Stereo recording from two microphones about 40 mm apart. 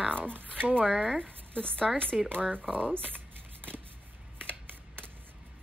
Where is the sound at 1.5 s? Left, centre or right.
Left.